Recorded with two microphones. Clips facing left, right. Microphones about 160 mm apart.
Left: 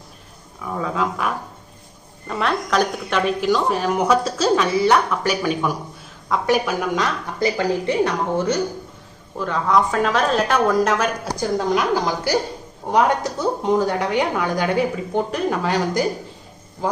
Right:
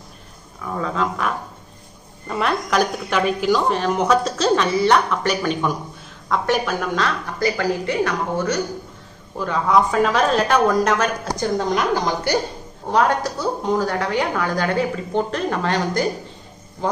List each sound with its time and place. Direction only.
0.6 s a woman's voice: 5° left (ahead or behind)
2.2 s a woman's voice: 5° right (ahead or behind)
7.3 s speech: 25° left (ahead or behind)
9.4 s a woman's voice: centre (ahead or behind)
12.9 s a woman's voice: 20° left (ahead or behind)